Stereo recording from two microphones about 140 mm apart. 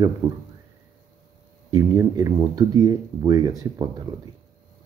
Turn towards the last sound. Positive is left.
turn(degrees=-30)  # may be behind; listen again after turning